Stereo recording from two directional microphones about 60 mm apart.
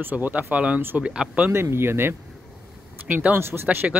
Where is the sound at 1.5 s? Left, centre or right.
Right.